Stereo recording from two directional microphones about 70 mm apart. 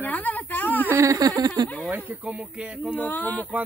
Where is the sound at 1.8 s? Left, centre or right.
Right.